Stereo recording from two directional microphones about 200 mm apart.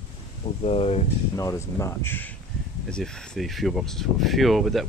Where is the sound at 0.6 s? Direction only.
30° left (ahead or behind).